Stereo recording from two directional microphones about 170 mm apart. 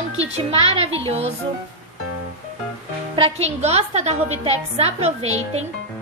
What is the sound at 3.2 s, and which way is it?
A woman's voice, 40° right (ahead or behind).